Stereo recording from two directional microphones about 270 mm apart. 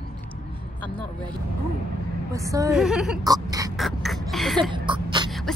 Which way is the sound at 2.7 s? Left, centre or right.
Centre.